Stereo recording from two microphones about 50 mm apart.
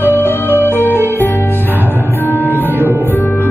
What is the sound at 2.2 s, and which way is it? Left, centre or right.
Music, left.